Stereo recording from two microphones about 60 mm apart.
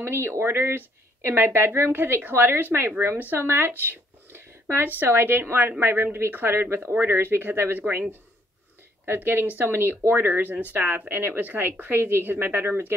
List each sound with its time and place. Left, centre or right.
0.0 s speech: right
9.0 s speech: right